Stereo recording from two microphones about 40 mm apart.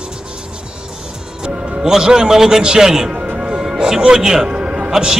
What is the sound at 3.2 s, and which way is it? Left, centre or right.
Music, right.